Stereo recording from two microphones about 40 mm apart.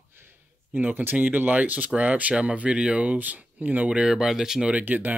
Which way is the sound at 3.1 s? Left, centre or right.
Right.